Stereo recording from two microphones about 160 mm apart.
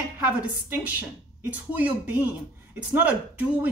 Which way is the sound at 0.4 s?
10° right (ahead or behind).